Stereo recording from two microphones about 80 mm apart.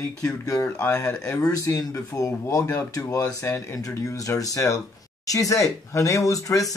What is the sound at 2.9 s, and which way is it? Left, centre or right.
A man's voice, left.